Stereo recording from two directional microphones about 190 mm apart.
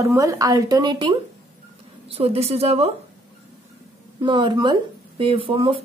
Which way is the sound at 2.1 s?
30° right (ahead or behind).